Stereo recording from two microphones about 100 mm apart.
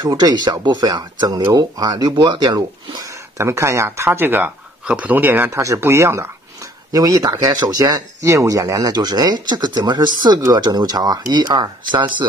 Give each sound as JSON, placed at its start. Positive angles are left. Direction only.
{"t": 0.1, "sound": "speech", "side_deg": -45}